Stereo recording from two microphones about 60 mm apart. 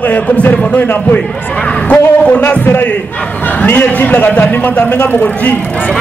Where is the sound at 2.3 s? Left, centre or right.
Left.